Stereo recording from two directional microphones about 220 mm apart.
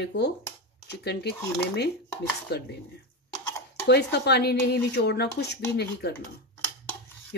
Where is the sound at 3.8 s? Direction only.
50° left (ahead or behind).